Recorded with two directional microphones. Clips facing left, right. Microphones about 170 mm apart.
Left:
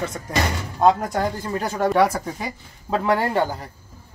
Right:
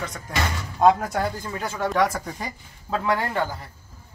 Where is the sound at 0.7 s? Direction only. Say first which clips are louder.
Even; 5° right (ahead or behind).